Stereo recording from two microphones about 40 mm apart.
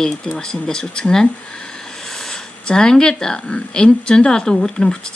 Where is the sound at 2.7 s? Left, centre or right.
Centre.